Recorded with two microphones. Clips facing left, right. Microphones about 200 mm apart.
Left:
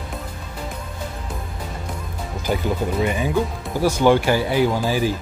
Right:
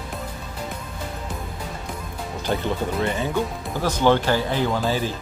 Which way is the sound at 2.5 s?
10° left (ahead or behind).